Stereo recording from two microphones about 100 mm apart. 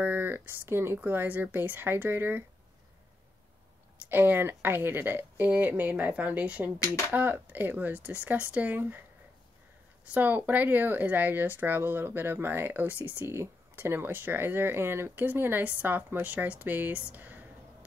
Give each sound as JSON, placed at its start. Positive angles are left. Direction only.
{"t": 0.0, "sound": "speech", "side_deg": -20}
{"t": 4.1, "sound": "a woman's voice", "side_deg": -20}
{"t": 10.0, "sound": "speech", "side_deg": -15}